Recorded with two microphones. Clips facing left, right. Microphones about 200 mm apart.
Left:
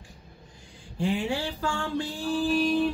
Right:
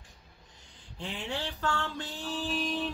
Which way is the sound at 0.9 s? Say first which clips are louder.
Left 9 dB; 10° left (ahead or behind).